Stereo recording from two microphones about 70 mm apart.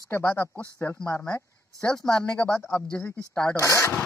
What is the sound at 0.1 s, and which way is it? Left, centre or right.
Speech, left.